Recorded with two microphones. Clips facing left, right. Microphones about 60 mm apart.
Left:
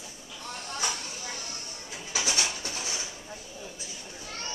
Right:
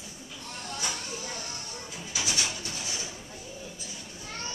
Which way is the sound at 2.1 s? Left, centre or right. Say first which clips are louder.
Left 2 dB; left.